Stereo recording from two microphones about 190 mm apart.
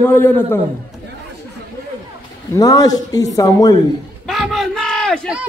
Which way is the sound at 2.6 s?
20° left (ahead or behind).